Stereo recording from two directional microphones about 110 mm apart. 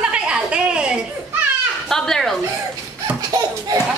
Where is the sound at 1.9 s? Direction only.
5° left (ahead or behind).